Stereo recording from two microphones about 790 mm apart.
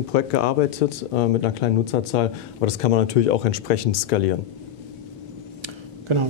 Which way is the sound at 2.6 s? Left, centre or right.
Left.